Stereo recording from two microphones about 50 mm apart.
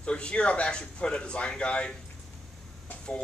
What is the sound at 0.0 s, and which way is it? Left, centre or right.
Speech, left.